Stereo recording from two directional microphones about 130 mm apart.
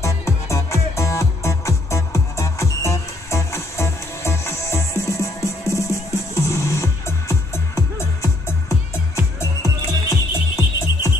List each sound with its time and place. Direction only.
0.0 s music: 25° left (ahead or behind)